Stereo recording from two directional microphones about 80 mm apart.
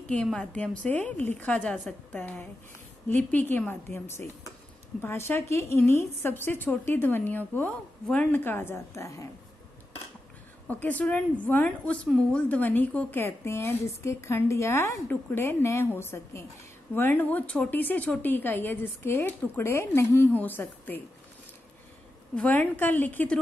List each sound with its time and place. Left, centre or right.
0.1 s a woman's voice: centre; by 9.3 s left
10.7 s a woman's voice: left
22.3 s a woman's voice: centre